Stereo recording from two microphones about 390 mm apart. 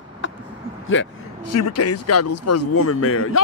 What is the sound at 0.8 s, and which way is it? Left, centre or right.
Speech, left.